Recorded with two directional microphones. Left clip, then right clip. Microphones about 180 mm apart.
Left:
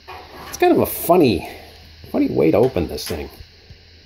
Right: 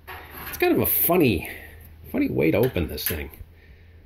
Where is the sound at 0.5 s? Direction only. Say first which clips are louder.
Left 6 dB; 20° left (ahead or behind).